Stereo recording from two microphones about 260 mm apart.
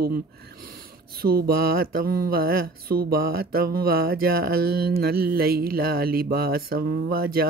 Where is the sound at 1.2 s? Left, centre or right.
Right.